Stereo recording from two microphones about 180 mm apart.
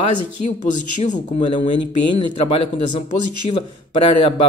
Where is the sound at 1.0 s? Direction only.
40° left (ahead or behind).